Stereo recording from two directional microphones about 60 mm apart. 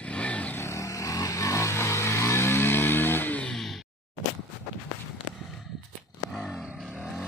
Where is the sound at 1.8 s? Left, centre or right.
Left.